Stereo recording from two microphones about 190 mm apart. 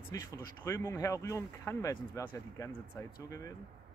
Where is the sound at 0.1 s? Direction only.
20° left (ahead or behind).